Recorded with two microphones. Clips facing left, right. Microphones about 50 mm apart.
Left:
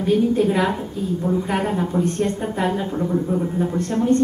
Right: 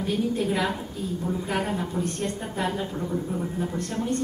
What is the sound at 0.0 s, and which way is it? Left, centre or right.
A woman's voice, centre.